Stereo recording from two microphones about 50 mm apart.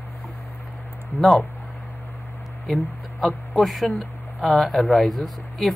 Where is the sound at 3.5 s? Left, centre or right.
Centre.